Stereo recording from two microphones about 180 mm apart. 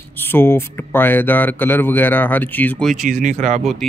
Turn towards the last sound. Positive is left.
turn(degrees=0)  # may be behind; listen again after turning